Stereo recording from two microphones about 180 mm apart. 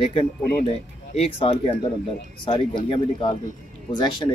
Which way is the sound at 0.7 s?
35° left (ahead or behind).